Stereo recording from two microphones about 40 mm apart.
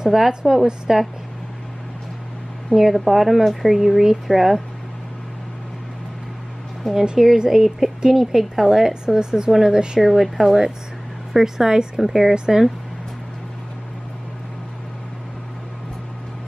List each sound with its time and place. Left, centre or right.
0.0 s a woman's voice: centre
2.7 s speech: centre
6.8 s speech: centre
12.0 s speech: centre